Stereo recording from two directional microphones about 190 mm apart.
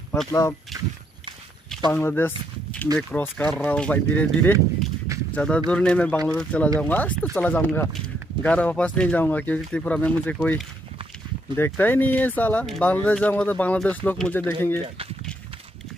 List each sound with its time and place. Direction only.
0.3 s speech: 15° left (ahead or behind)
1.9 s speech: 10° left (ahead or behind)